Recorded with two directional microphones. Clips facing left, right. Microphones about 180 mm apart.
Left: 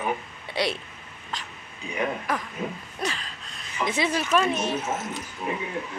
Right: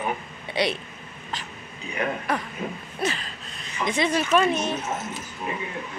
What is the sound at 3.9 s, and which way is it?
Speech, 5° left (ahead or behind).